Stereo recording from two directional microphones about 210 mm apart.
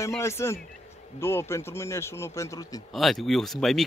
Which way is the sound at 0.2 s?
10° left (ahead or behind).